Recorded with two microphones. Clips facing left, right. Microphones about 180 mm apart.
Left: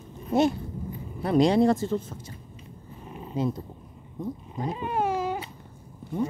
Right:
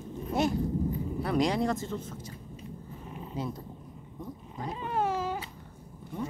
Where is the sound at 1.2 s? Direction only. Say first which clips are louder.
Left 8 dB; 25° left (ahead or behind).